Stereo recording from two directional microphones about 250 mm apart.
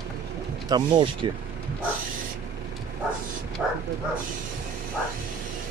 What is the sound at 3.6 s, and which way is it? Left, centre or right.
Bow-wow, centre.